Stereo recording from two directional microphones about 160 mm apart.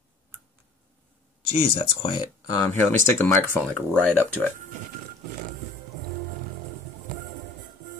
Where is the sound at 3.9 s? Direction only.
10° left (ahead or behind).